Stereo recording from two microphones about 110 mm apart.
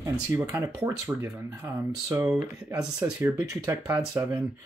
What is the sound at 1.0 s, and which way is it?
Speech, 30° right (ahead or behind).